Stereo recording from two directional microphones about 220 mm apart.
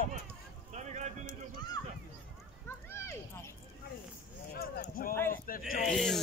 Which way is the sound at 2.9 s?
10° left (ahead or behind).